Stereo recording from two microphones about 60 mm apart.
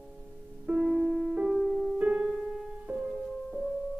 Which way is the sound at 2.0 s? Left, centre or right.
Centre.